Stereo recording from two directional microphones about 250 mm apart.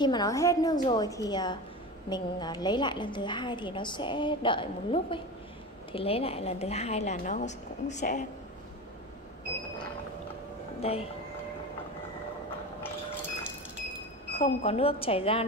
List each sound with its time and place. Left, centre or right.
0.0 s a woman's voice: centre
10.8 s speech: left
14.3 s a woman's voice: left